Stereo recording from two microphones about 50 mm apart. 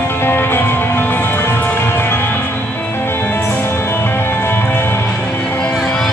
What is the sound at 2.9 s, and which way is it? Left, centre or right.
Music, left.